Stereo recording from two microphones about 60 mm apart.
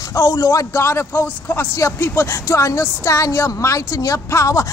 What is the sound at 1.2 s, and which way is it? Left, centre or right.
Speech, left.